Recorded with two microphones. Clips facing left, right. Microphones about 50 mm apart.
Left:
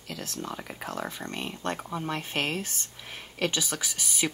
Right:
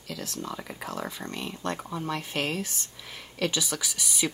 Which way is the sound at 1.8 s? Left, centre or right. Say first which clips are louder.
Even; centre.